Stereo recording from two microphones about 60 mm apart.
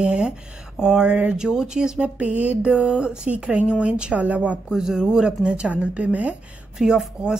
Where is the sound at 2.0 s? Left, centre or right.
Right.